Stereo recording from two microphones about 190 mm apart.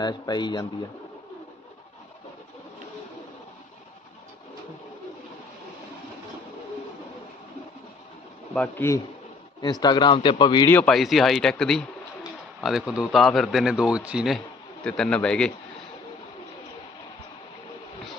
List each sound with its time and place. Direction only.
0.0 s a man's voice: 20° left (ahead or behind)
8.5 s a man's voice: 10° left (ahead or behind)
10.7 s speech: 5° left (ahead or behind)